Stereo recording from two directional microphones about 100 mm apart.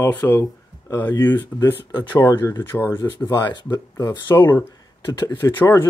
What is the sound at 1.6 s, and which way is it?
Speech, 30° left (ahead or behind).